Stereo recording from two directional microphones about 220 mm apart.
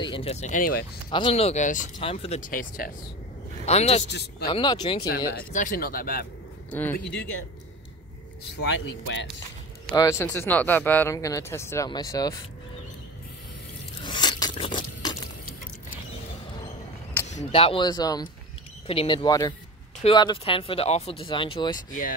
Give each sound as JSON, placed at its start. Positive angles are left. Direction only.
{"t": 0.0, "sound": "speech", "side_deg": 25}
{"t": 1.1, "sound": "speech", "side_deg": 25}
{"t": 4.1, "sound": "a man's voice", "side_deg": 45}
{"t": 4.5, "sound": "speech", "side_deg": 20}
{"t": 5.5, "sound": "speech", "side_deg": 35}
{"t": 6.7, "sound": "speech", "side_deg": 10}
{"t": 8.5, "sound": "speech", "side_deg": 55}
{"t": 9.8, "sound": "speech", "side_deg": 15}
{"t": 14.0, "sound": "a sound", "side_deg": 20}
{"t": 17.3, "sound": "speech", "side_deg": 30}